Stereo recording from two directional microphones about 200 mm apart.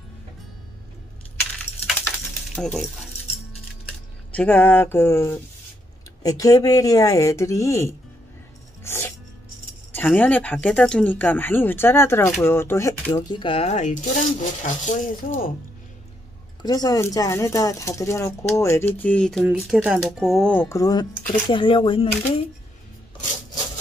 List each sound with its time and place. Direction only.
2.4 s speech: centre (ahead or behind)
4.3 s speech: 5° left (ahead or behind)
8.8 s music: 10° left (ahead or behind)
9.9 s speech: 10° left (ahead or behind); by 15.5 s 40° left (ahead or behind)
16.6 s speech: 20° left (ahead or behind)
19.4 s speech: 5° right (ahead or behind); by 22.1 s 25° left (ahead or behind)